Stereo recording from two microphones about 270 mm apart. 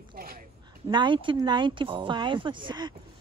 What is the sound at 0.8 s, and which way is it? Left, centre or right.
Speech, centre.